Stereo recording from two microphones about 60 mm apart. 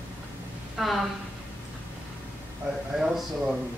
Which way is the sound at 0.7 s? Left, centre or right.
Centre.